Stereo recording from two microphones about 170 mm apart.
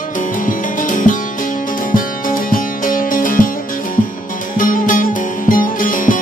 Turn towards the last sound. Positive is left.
turn(degrees=50)  # may be behind; listen again after turning